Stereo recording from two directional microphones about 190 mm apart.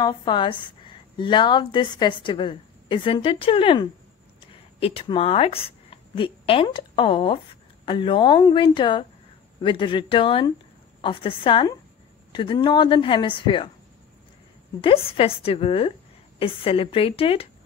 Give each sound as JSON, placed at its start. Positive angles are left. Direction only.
{"t": 0.0, "sound": "a woman's voice", "side_deg": 25}
{"t": 14.8, "sound": "a woman's voice", "side_deg": 30}